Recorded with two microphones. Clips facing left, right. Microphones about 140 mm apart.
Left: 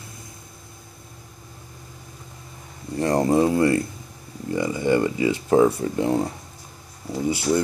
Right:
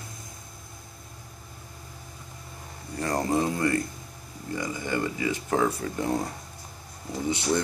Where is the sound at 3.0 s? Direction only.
30° left (ahead or behind).